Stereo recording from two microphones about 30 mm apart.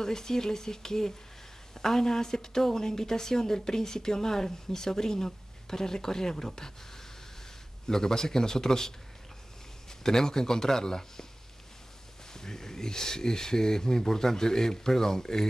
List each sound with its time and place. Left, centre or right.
0.0 s speech: centre
7.9 s speech: centre
12.3 s speech: centre